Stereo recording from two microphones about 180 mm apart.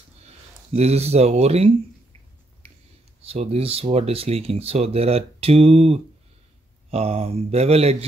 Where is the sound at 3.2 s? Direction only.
35° right (ahead or behind).